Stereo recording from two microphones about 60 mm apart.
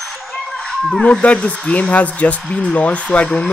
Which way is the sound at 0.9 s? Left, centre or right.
Centre.